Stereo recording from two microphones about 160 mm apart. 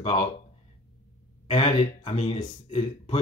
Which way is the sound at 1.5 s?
35° left (ahead or behind).